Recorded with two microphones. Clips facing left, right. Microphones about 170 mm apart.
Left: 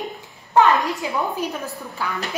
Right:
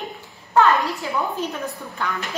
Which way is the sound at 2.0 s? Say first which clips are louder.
Right 1 dB; 5° left (ahead or behind).